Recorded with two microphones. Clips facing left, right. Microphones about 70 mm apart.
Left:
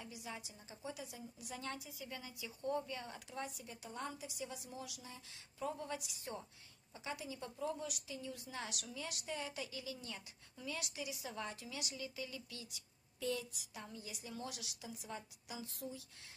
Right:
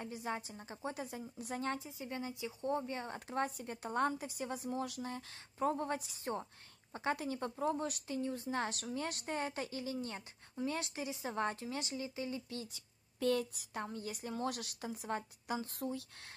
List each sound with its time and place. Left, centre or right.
0.0 s a woman's voice: right
6.9 s a woman's voice: right
13.2 s a woman's voice: right